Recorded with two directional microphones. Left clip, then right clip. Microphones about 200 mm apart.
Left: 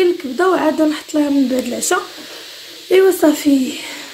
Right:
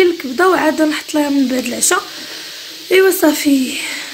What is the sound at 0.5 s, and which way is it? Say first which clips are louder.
Speech: right 1 dB; 5° right (ahead or behind).